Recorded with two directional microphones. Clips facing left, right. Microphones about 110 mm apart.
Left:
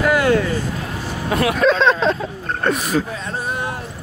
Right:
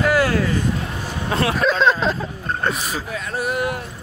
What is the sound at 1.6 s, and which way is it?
Vehicle, centre (ahead or behind).